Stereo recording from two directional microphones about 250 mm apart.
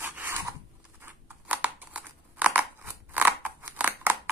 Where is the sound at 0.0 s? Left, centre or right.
Centre.